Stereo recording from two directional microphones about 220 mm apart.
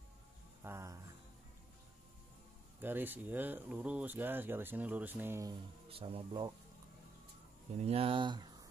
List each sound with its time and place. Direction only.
0.7 s music: 10° right (ahead or behind)
2.8 s speech: 10° right (ahead or behind)
7.7 s speech: 30° right (ahead or behind)